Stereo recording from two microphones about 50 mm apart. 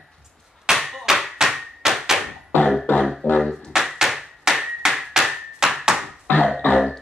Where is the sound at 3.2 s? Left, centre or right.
Left.